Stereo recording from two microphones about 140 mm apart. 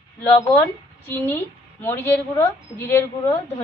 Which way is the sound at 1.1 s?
15° left (ahead or behind).